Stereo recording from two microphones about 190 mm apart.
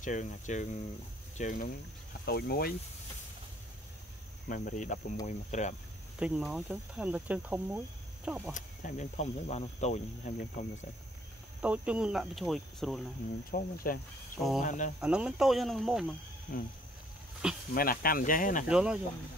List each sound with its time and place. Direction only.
0.0 s speech: 40° left (ahead or behind)
2.2 s speech: 55° left (ahead or behind)
4.5 s cricket: 40° left (ahead or behind)
5.2 s speech: 40° left (ahead or behind)
6.1 s speech: 5° right (ahead or behind)
8.5 s speech: 40° left (ahead or behind)
11.6 s speech: 5° right (ahead or behind)
13.5 s cricket: 50° left (ahead or behind)
15.0 s speech: 5° right (ahead or behind)
17.4 s speech: 5° right (ahead or behind)
17.7 s cricket: 50° left (ahead or behind)
18.7 s speech: 5° right (ahead or behind)